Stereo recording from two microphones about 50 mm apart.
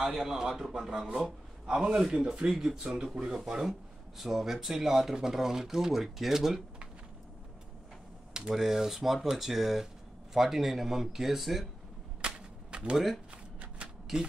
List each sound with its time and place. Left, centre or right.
0.0 s speech: centre
8.3 s a sound: centre
8.5 s speech: centre
12.2 s typewriter: centre
12.9 s speech: centre
13.8 s a sound: centre